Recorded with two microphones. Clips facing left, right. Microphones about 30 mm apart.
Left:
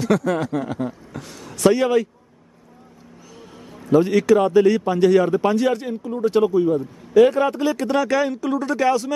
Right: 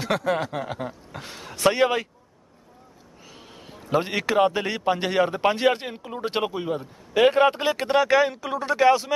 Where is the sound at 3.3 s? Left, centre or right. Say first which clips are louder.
Left 3 dB; right.